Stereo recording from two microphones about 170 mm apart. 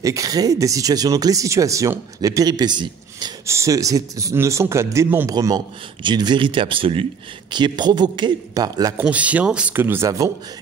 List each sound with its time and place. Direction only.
0.0 s speech: 20° right (ahead or behind)
9.0 s speech: 10° right (ahead or behind)